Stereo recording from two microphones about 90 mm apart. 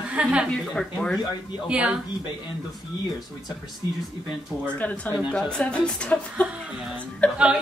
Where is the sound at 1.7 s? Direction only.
15° right (ahead or behind).